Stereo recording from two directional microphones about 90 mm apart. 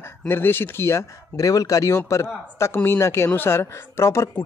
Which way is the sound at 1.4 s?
40° left (ahead or behind).